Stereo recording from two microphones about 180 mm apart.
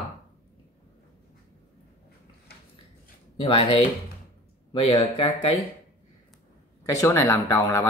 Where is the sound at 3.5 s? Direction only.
35° left (ahead or behind).